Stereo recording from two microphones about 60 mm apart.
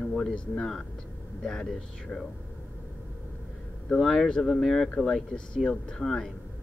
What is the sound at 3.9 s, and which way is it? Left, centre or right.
Speech, centre.